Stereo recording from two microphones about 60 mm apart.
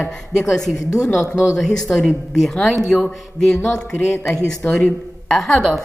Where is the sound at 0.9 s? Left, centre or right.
Left.